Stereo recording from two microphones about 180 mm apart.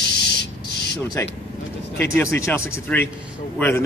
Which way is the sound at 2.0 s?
10° left (ahead or behind).